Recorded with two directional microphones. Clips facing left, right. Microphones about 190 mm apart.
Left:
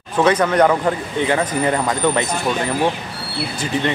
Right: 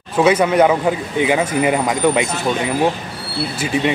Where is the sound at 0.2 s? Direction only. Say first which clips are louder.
Right 2 dB; 10° right (ahead or behind).